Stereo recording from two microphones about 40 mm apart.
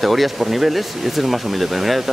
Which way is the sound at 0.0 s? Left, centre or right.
Centre.